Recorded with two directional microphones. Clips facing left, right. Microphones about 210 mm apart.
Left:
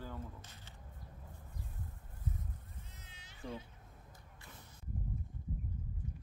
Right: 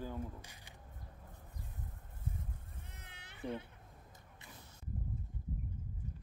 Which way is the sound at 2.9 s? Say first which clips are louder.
Right 2 dB; 60° right (ahead or behind).